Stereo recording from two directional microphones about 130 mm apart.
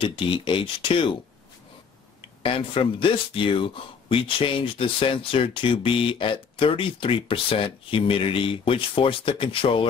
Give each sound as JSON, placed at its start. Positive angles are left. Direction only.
{"t": 0.0, "sound": "speech", "side_deg": 40}
{"t": 2.2, "sound": "speech", "side_deg": 45}